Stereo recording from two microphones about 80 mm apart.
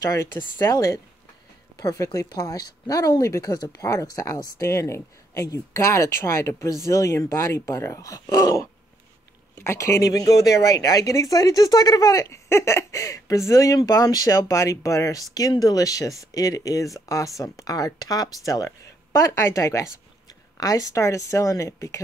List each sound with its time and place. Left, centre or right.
0.6 s speech: left